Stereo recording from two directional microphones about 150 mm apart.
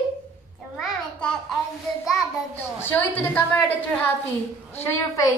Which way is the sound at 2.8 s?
15° left (ahead or behind).